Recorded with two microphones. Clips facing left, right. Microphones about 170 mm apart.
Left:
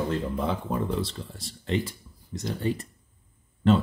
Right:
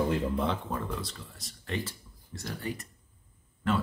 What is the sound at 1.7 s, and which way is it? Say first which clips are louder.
Speech: left 6 dB; 20° left (ahead or behind).